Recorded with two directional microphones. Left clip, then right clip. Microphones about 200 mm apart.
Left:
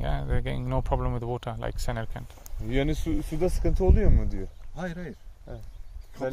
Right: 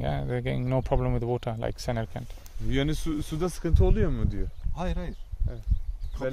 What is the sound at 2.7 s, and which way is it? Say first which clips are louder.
Speech: left 1 dB; 50° right (ahead or behind).